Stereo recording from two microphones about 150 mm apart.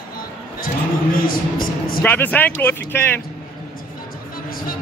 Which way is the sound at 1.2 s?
75° left (ahead or behind).